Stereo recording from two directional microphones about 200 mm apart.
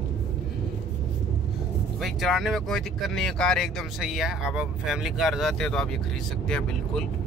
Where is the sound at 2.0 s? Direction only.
Centre (ahead or behind).